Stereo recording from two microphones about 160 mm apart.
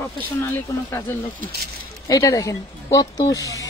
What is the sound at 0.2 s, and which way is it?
Speech, 10° left (ahead or behind).